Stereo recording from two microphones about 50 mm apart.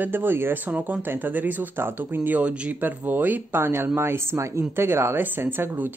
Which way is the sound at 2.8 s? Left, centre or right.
Right.